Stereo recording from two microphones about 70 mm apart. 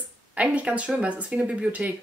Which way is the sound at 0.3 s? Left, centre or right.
Right.